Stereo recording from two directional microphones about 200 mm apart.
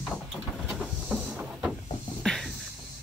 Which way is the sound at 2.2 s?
5° left (ahead or behind).